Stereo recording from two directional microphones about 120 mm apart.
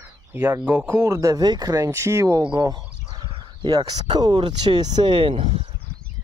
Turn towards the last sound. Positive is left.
turn(degrees=-55)  # may be behind; listen again after turning